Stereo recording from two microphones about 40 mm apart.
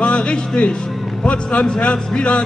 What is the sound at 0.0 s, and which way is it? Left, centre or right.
Music, left.